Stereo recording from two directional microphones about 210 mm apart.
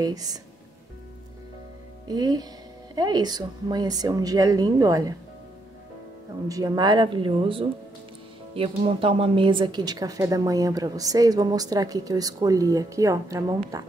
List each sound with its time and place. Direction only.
0.0 s a woman's voice: 20° right (ahead or behind)
2.0 s a woman's voice: 20° right (ahead or behind)
6.5 s a woman's voice: 15° right (ahead or behind)